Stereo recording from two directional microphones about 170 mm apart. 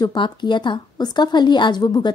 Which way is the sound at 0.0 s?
25° left (ahead or behind).